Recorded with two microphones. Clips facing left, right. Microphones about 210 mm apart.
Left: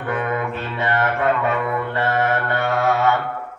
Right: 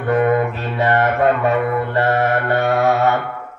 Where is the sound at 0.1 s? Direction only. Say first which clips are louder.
Right 8 dB; 40° right (ahead or behind).